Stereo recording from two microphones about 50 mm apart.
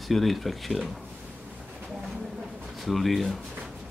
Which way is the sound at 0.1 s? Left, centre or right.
Centre.